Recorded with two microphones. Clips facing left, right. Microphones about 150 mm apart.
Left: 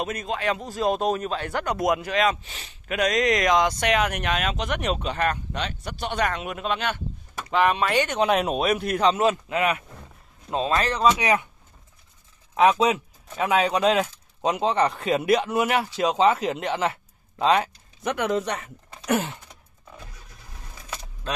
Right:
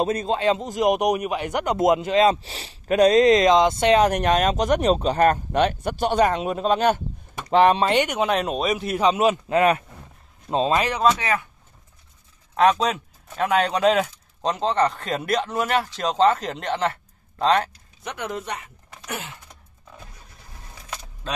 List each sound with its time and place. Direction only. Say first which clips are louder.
0.0 s a man's voice: right 6 dB; 30° right (ahead or behind)
8.2 s speech: left 1 dB; 5° left (ahead or behind)
9.1 s speech: right 2 dB; 15° right (ahead or behind)
9.5 s a man's voice: right 6 dB; 35° right (ahead or behind)
10.8 s speech: right 1 dB; 10° right (ahead or behind)
11.1 s a man's voice: left 2 dB; 15° left (ahead or behind)
12.5 s speech: even; 5° left (ahead or behind)
14.5 s a man's voice: right 1 dB; 10° left (ahead or behind)
18.0 s speech: left 6 dB; 75° left (ahead or behind)
19.0 s a sound: left 9 dB; 45° left (ahead or behind)